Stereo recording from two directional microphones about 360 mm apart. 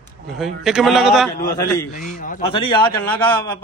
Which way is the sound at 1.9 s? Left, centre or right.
Left.